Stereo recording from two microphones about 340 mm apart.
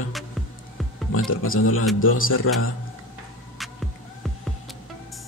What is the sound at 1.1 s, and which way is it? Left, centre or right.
Speech, left.